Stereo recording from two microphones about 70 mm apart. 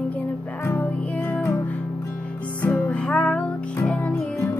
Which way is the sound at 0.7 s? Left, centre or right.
Left.